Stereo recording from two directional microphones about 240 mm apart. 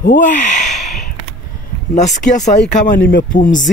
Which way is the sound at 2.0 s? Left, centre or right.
Left.